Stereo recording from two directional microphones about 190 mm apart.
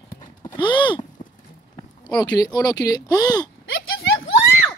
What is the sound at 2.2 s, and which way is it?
Speech, 20° left (ahead or behind).